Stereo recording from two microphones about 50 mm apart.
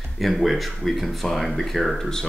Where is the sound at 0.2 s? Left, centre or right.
Centre.